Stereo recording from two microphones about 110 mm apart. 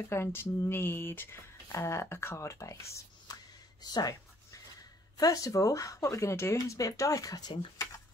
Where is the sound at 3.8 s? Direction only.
35° left (ahead or behind).